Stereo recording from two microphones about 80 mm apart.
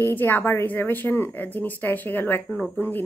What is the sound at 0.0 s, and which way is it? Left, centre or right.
A woman's voice, left.